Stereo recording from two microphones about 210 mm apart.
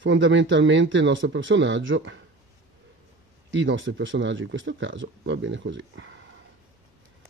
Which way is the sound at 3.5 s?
60° right (ahead or behind).